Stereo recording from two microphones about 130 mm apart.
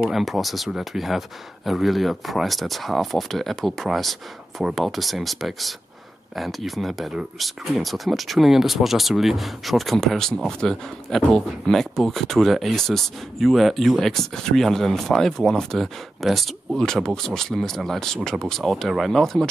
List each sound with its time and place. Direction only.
0.0 s speech: centre (ahead or behind)